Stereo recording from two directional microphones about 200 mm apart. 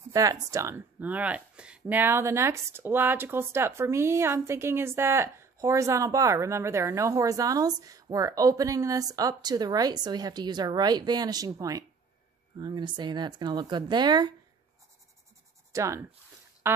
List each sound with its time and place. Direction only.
0.1 s speech: 15° right (ahead or behind)
15.7 s speech: 15° right (ahead or behind)